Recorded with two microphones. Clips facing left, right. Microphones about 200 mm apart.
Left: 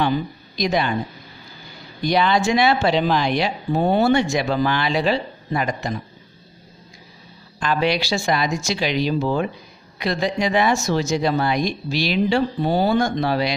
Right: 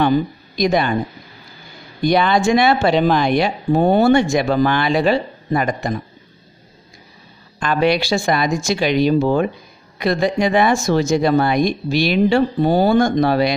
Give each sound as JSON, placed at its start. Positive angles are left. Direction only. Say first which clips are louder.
{"t": 0.0, "sound": "a woman's voice", "louder": "right 5 dB", "side_deg": -50}
{"t": 2.0, "sound": "speech", "louder": "right 3 dB", "side_deg": -50}
{"t": 7.6, "sound": "speech", "louder": "right 4 dB", "side_deg": -55}